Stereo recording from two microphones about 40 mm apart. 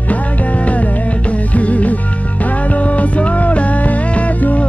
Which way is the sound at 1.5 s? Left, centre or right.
Left.